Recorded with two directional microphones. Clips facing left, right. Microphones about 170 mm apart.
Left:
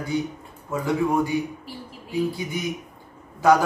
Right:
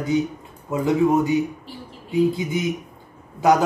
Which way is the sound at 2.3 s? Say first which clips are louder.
Right 5 dB; 20° right (ahead or behind).